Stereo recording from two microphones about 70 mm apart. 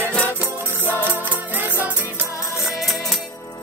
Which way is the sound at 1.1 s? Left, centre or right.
Right.